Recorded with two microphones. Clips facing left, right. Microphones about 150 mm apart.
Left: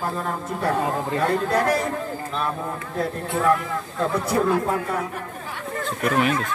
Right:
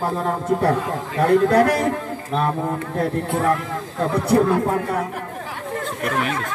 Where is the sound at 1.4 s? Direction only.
65° right (ahead or behind).